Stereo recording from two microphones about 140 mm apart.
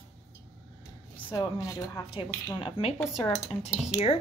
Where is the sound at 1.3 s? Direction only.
25° left (ahead or behind).